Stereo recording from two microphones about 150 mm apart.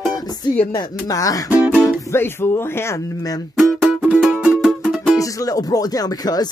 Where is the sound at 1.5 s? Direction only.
10° right (ahead or behind).